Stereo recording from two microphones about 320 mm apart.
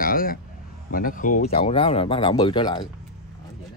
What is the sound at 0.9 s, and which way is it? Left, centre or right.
Speech, left.